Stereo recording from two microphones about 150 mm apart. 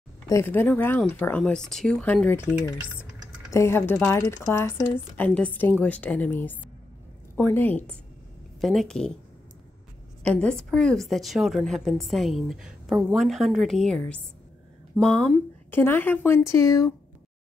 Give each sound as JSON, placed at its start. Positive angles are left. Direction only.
{"t": 0.3, "sound": "a woman's voice", "side_deg": 15}
{"t": 10.2, "sound": "a woman's voice", "side_deg": 5}